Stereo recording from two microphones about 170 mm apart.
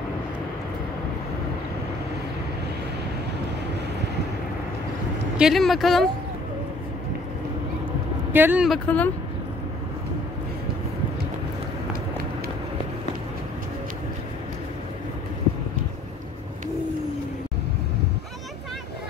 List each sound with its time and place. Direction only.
5.4 s speech: centre (ahead or behind)
8.3 s speech: 10° right (ahead or behind)
8.6 s speech: 5° left (ahead or behind)